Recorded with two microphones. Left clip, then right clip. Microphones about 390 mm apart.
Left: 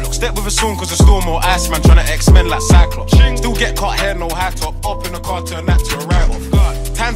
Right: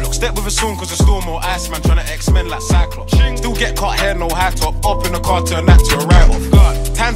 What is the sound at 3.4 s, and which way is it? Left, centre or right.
Music, centre.